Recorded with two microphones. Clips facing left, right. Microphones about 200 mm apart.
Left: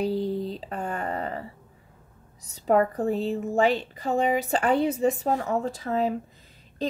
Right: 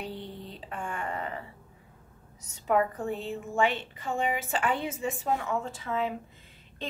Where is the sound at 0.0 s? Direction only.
40° left (ahead or behind).